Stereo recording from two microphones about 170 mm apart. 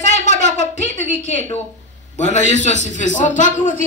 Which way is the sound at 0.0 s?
45° left (ahead or behind).